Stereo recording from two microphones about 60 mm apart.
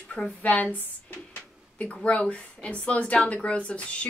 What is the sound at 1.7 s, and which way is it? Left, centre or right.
Speech, left.